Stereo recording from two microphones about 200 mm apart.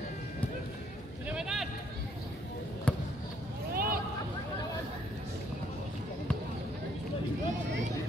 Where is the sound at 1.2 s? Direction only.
5° right (ahead or behind).